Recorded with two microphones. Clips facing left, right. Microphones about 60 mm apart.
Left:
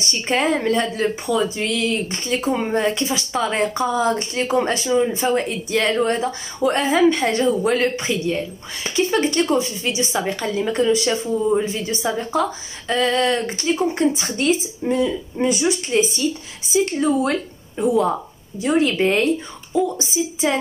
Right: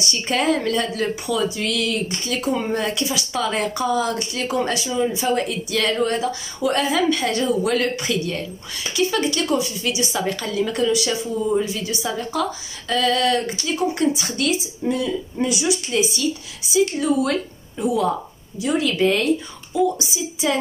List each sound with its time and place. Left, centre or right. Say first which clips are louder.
0.0 s speech: left 1 dB; left
8.8 s a woman's voice: left 2 dB; left